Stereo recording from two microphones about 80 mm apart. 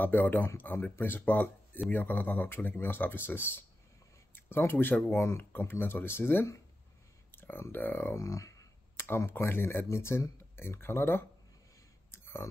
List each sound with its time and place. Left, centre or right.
0.0 s speech: left
8.2 s clicking: left
9.0 s speech: left
12.1 s clicking: left